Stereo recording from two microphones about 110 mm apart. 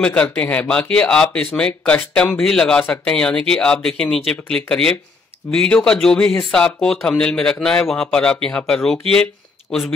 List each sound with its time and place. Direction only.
0.0 s speech: 10° left (ahead or behind)